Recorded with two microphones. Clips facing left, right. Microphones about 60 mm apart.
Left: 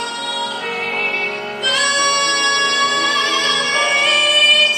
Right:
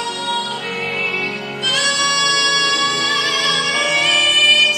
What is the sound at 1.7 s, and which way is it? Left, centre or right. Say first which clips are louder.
Music: left 2 dB; centre.